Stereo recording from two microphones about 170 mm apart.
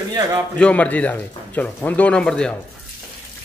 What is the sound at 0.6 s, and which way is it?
Speech, 10° left (ahead or behind).